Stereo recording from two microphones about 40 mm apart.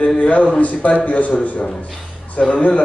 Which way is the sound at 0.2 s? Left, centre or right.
Left.